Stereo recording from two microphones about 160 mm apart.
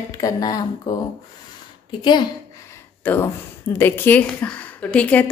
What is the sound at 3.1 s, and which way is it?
A woman's voice, 10° left (ahead or behind).